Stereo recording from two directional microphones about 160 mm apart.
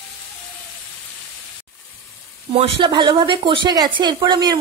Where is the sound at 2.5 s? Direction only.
35° right (ahead or behind).